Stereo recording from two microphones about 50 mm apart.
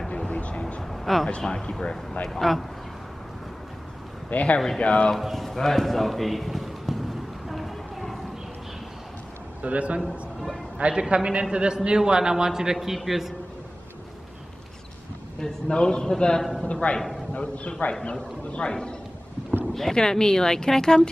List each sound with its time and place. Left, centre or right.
0.3 s vehicle: left
0.8 s a sound: centre
1.4 s speech: centre
4.3 s a man's voice: left
5.2 s a sound: centre
9.6 s a man's voice: right
10.0 s a man's voice: centre
10.8 s a man's voice: right; by 13.3 s centre
15.4 s speech: centre
16.8 s a man's voice: left
19.6 s speech: centre